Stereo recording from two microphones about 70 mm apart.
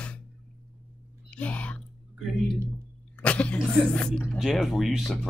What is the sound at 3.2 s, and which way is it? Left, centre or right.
Speech, centre.